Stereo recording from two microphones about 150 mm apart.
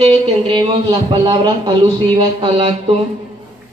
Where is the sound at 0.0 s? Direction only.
40° right (ahead or behind).